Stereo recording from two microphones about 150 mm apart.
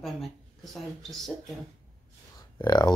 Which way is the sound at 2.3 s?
25° left (ahead or behind).